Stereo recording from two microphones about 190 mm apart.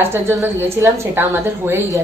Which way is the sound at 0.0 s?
10° right (ahead or behind).